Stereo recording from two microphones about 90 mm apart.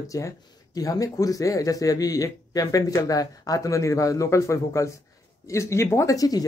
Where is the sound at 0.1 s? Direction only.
40° left (ahead or behind).